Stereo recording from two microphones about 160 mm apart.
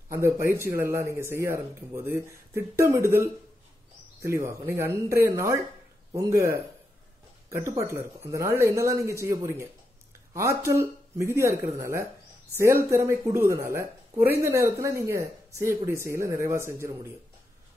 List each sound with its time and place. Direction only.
0.1 s speech: 15° right (ahead or behind)